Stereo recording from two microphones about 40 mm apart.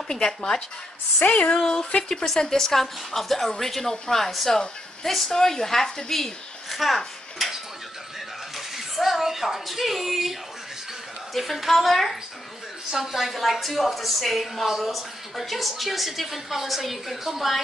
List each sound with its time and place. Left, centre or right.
0.1 s a woman's voice: centre
1.2 s speech: left
1.6 s a woman's voice: centre
11.3 s a woman's voice: centre
12.9 s a woman's voice: centre